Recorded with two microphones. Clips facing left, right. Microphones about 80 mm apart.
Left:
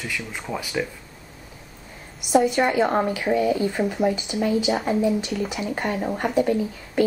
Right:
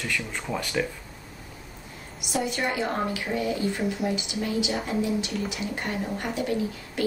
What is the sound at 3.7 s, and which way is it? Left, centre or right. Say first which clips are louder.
Speech: left 5 dB; left.